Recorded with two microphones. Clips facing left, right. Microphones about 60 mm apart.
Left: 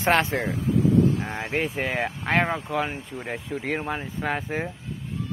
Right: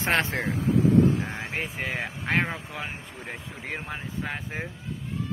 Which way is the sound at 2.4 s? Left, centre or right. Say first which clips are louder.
Left 5 dB; left.